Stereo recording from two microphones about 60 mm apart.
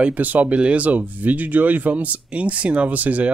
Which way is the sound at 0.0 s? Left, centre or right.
Right.